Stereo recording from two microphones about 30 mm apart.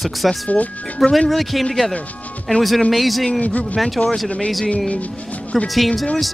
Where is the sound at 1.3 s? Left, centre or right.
Centre.